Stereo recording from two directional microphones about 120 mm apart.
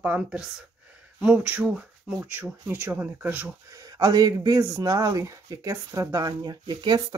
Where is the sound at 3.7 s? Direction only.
30° right (ahead or behind).